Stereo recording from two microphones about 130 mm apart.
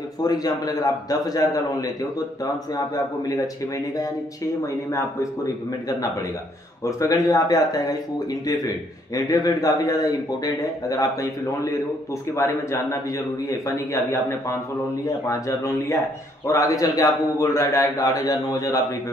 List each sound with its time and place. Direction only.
0.2 s a man's voice: 30° left (ahead or behind)
3.3 s a man's voice: 25° left (ahead or behind)
6.8 s a man's voice: 25° left (ahead or behind)